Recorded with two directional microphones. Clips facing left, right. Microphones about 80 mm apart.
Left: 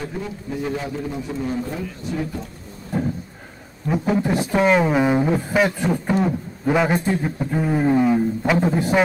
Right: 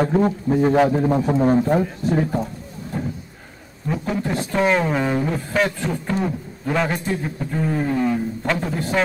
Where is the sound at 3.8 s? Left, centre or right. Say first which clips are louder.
Left 3 dB; centre.